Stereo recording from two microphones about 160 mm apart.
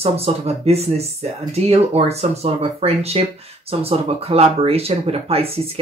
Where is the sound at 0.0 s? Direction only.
40° right (ahead or behind).